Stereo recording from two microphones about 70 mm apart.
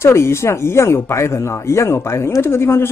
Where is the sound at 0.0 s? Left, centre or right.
Left.